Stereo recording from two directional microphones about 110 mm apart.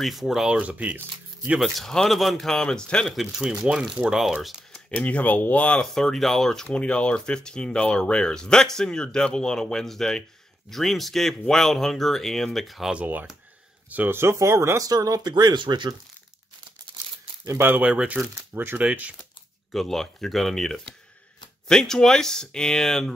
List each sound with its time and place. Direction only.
0.0 s speech: centre (ahead or behind)
1.8 s speech: 5° left (ahead or behind)
13.0 s speech: 15° right (ahead or behind); by 16.0 s 40° right (ahead or behind)
17.5 s speech: 20° right (ahead or behind)
19.7 s speech: 5° left (ahead or behind)